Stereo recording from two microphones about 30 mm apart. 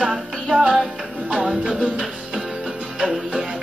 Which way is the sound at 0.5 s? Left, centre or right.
Right.